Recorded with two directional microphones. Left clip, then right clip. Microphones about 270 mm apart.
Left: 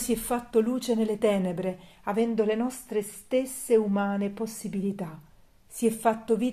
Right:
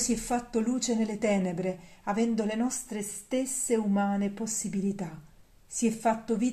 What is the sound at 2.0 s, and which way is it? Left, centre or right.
Speech, left.